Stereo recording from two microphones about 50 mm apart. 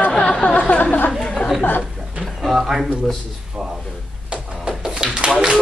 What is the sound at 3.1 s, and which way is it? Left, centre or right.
Speech, centre.